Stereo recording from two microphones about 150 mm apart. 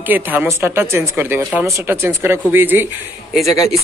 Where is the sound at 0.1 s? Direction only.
10° right (ahead or behind).